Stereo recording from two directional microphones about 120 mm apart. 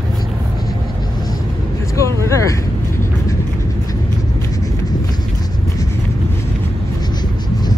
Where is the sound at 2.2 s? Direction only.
25° left (ahead or behind).